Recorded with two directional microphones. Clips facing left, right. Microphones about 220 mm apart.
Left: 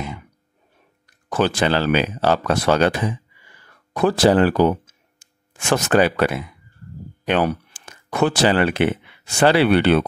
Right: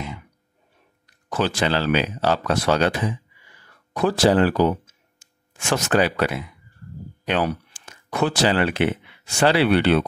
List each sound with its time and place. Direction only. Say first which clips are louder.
1.3 s speech: left 3 dB; 50° left (ahead or behind)